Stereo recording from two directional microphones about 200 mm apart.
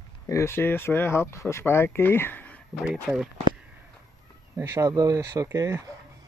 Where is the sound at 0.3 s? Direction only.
15° left (ahead or behind); by 3.3 s 5° right (ahead or behind).